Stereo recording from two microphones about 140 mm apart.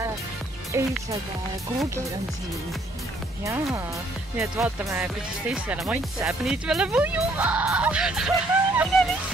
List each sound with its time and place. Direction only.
0.7 s speech: 20° right (ahead or behind)
4.4 s speech: centre (ahead or behind)